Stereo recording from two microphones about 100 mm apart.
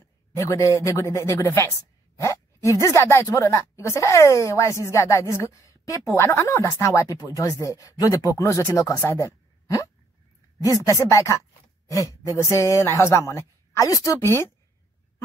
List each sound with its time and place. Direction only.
0.4 s speech: 35° left (ahead or behind)